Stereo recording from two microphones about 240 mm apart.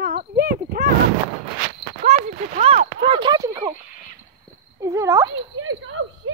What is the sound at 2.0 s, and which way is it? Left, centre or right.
Speech, right.